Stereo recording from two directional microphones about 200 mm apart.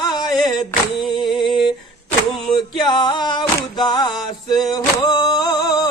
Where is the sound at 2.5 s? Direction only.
20° left (ahead or behind).